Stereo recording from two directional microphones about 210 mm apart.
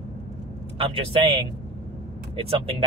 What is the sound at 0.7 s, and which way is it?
Speech, 25° right (ahead or behind).